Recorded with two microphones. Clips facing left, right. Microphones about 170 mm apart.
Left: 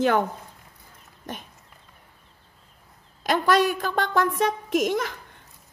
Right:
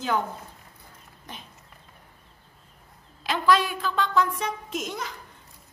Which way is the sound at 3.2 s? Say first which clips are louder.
Left 2 dB; 45° left (ahead or behind).